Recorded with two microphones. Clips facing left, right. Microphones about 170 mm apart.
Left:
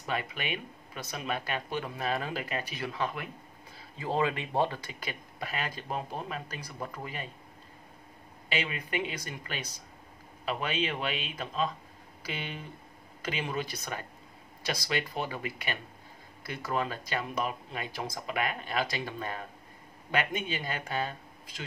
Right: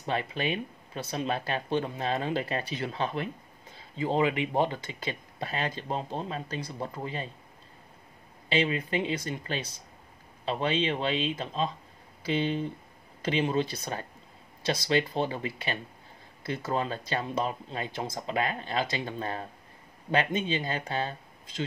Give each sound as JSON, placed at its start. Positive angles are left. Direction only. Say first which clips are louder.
{"t": 0.0, "sound": "speech", "louder": "right 4 dB", "side_deg": -30}
{"t": 8.5, "sound": "speech", "louder": "right 6 dB", "side_deg": -30}